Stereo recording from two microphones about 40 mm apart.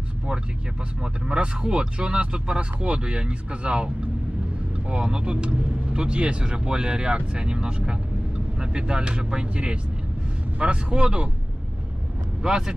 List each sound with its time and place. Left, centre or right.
1.0 s speech: right
12.4 s speech: centre